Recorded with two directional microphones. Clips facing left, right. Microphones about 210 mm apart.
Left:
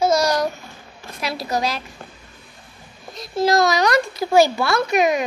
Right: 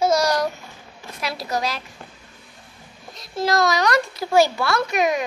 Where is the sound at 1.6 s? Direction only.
Centre (ahead or behind).